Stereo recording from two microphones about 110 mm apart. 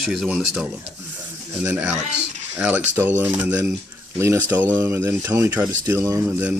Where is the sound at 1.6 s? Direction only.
20° right (ahead or behind).